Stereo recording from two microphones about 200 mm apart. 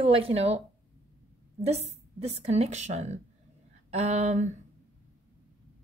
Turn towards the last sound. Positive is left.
turn(degrees=-35)  # may be behind; listen again after turning